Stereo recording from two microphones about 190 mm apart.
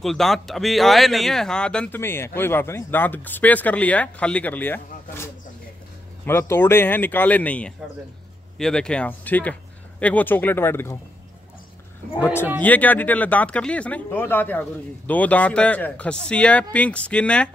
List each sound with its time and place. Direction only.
0.0 s speech: centre (ahead or behind)
12.0 s speech: 40° right (ahead or behind)
12.5 s speech: 10° left (ahead or behind)